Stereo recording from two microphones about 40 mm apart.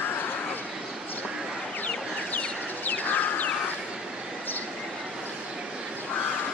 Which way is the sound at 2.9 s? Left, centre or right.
Left.